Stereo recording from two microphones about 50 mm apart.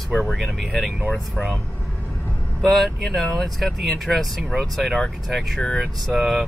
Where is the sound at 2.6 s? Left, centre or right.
Centre.